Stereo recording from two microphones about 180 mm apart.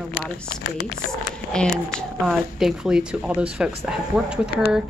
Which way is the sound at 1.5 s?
5° left (ahead or behind).